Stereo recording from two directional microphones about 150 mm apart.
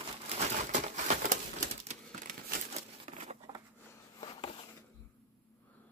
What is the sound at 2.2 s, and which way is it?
Crumpling, 70° right (ahead or behind).